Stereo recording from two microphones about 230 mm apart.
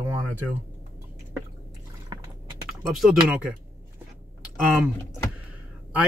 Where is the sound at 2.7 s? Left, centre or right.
Centre.